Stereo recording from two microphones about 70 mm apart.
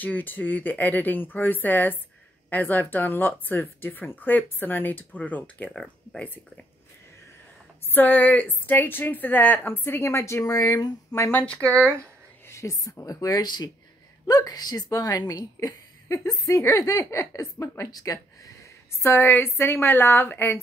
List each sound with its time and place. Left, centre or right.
0.0 s a woman's voice: left
5.7 s speech: centre
7.9 s a woman's voice: left
11.6 s speech: right
12.4 s a woman's voice: left
14.2 s a woman's voice: left
18.9 s a woman's voice: left